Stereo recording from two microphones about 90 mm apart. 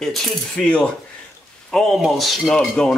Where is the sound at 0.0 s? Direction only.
5° left (ahead or behind).